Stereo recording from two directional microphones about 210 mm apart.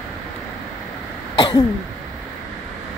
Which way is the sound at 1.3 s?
20° left (ahead or behind).